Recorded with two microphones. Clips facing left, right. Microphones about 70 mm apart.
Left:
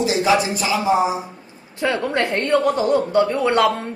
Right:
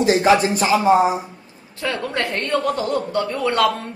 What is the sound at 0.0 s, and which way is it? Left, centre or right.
A man's voice, right.